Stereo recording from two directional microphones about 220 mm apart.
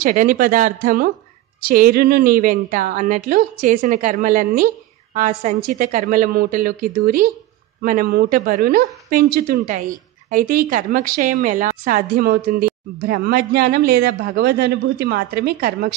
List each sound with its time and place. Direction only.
0.0 s a woman's voice: 40° right (ahead or behind)